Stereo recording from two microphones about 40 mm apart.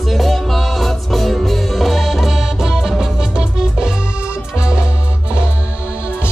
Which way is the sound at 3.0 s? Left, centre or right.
Right.